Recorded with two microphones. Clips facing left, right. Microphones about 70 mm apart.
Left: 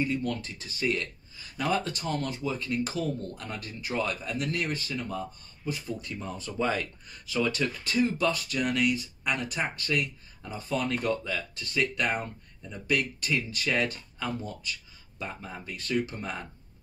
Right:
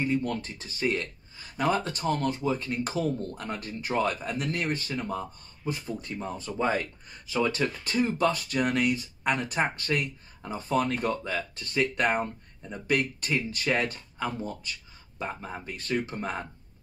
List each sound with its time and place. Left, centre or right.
0.0 s speech: right